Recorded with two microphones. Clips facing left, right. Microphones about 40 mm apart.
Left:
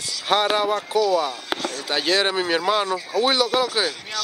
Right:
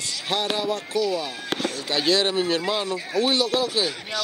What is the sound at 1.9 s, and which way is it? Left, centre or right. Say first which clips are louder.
Speech: left 1 dB; left.